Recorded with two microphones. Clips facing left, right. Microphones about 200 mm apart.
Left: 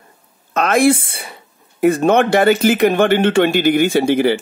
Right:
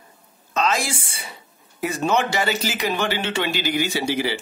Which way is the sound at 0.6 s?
55° left (ahead or behind).